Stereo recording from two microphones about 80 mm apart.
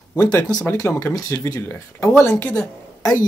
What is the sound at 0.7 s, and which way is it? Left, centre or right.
Speech, left.